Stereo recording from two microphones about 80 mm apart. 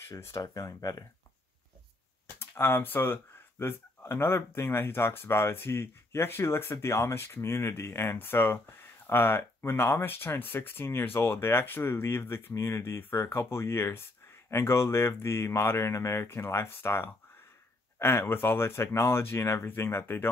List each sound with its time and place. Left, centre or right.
0.4 s speech: left
2.2 s speech: left